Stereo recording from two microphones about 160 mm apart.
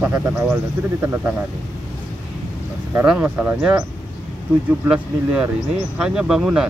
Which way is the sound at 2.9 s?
5° right (ahead or behind).